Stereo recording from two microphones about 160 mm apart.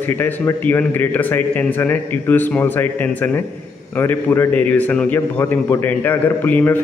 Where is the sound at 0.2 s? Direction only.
10° left (ahead or behind).